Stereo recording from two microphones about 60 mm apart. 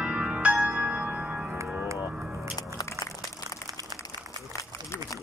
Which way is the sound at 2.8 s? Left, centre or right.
Left.